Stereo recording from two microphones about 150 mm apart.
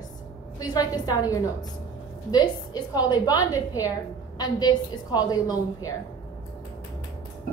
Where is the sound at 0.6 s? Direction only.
25° left (ahead or behind).